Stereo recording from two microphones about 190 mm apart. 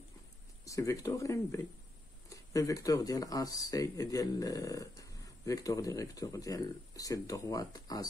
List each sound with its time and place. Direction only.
0.7 s speech: 15° left (ahead or behind)